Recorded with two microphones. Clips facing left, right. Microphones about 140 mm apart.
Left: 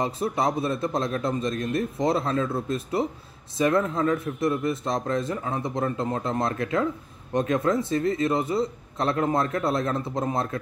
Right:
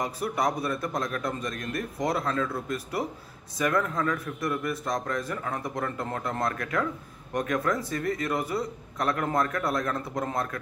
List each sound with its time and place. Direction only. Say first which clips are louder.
0.0 s a man's voice: left 3 dB; 25° left (ahead or behind)